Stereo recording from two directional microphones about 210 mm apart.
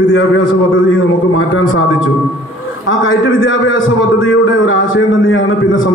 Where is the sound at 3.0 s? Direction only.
65° left (ahead or behind).